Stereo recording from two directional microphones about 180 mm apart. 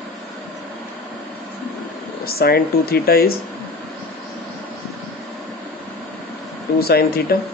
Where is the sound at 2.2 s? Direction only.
60° left (ahead or behind).